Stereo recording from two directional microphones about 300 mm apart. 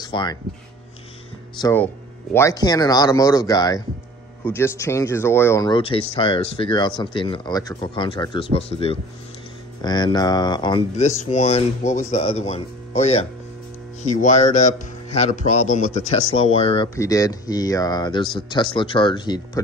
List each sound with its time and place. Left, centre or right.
0.0 s speech: centre
1.6 s speech: centre